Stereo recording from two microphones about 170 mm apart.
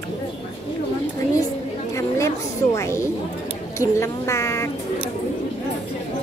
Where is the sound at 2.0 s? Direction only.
15° left (ahead or behind).